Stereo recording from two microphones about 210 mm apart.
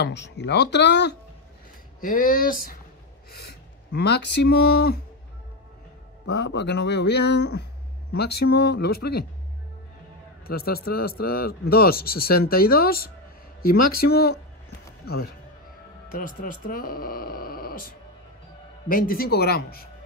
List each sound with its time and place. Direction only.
0.0 s speech: 55° left (ahead or behind)
2.0 s speech: 40° left (ahead or behind)
6.2 s a man's voice: 55° left (ahead or behind)
10.4 s a man's voice: 45° left (ahead or behind)